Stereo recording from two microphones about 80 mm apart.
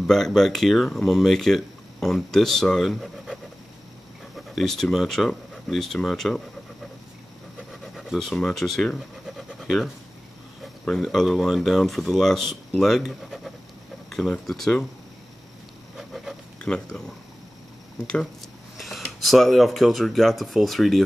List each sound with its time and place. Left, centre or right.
0.0 s speech: centre
4.4 s speech: centre
7.8 s a sound: centre
8.4 s speech: centre
16.0 s pig: centre
16.5 s speech: centre
18.8 s a sound: centre
19.1 s speech: centre